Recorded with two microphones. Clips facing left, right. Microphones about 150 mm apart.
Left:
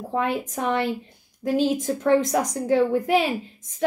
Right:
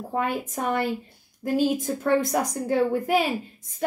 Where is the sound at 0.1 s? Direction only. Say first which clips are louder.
Left 2 dB; 5° right (ahead or behind).